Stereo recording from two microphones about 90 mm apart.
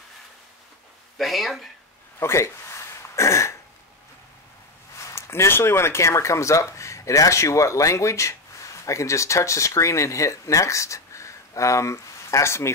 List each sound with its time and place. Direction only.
1.1 s speech: centre (ahead or behind)
2.1 s throat clearing: 30° left (ahead or behind)
4.9 s speech: 30° left (ahead or behind)